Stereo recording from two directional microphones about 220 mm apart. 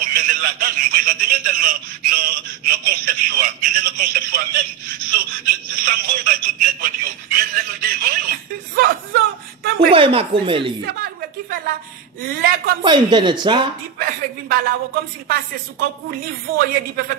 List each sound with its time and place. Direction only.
0.0 s speech: 40° right (ahead or behind)
7.2 s a sound: 40° right (ahead or behind)
9.9 s a woman's voice: 25° right (ahead or behind)
10.9 s a sound: 45° right (ahead or behind)
12.2 s a woman's voice: 45° right (ahead or behind)
12.8 s a woman's voice: 20° right (ahead or behind)
13.9 s a woman's voice: 40° right (ahead or behind)